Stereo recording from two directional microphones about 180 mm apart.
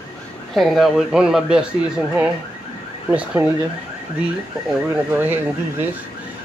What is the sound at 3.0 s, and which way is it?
Speech, 10° right (ahead or behind).